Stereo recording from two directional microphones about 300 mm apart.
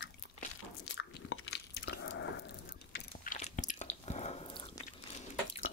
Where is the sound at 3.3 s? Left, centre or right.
Left.